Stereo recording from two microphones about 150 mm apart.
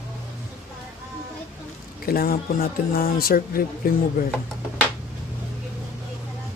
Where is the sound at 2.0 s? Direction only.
85° left.